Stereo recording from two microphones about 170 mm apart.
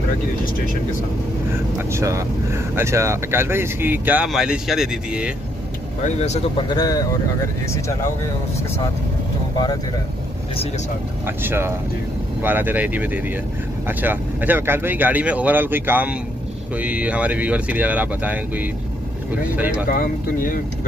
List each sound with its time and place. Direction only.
1.8 s speech: 15° right (ahead or behind)
6.0 s speech: 40° left (ahead or behind)
6.7 s speech: 20° left (ahead or behind)
11.2 s speech: 15° right (ahead or behind)
19.9 s speech: 55° left (ahead or behind)